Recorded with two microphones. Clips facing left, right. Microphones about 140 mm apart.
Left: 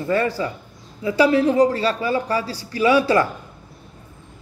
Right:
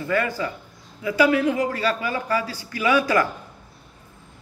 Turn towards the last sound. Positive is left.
turn(degrees=30)  # may be behind; listen again after turning